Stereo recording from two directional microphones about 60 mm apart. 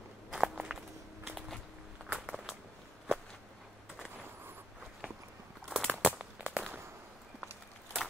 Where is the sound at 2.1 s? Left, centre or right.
Centre.